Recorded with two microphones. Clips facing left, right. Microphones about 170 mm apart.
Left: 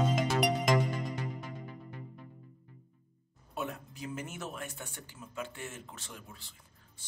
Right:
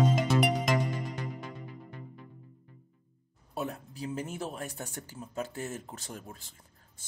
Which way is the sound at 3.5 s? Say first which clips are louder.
Right 3 dB; 35° right (ahead or behind).